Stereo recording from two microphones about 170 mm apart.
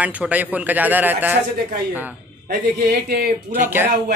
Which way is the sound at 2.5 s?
65° right (ahead or behind).